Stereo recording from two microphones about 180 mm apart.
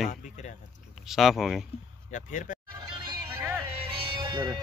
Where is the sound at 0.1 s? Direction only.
45° left (ahead or behind).